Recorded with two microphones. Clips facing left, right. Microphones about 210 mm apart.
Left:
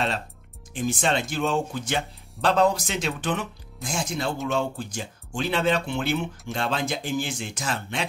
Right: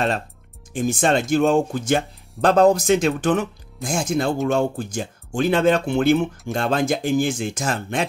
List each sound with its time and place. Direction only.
0.7 s speech: 45° right (ahead or behind)